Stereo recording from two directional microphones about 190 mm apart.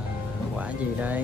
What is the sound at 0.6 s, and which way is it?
Speech, 10° right (ahead or behind).